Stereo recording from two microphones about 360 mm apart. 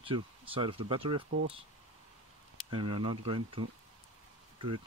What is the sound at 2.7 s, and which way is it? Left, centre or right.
Speech, centre.